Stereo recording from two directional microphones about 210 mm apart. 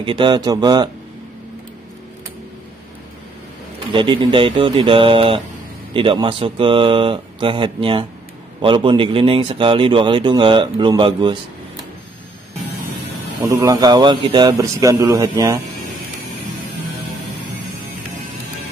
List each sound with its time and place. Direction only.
0.0 s a man's voice: 20° right (ahead or behind)
3.9 s a man's voice: 25° right (ahead or behind)
13.5 s a man's voice: 15° right (ahead or behind)